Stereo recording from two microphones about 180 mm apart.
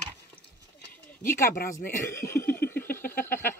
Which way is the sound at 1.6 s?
45° left (ahead or behind).